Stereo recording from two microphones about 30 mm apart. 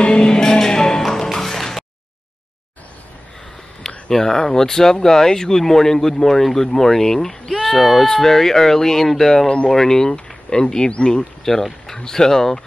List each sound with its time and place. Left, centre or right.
0.0 s music: left
3.8 s a sound: centre
4.2 s speech: left
7.6 s speech: centre
8.1 s speech: centre
10.1 s speech: left
10.9 s speech: left
11.5 s speech: centre